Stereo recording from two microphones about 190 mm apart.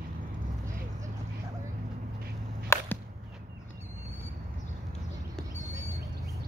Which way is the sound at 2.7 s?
15° left (ahead or behind).